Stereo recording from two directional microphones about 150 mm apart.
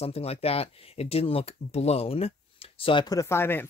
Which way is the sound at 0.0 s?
40° left (ahead or behind).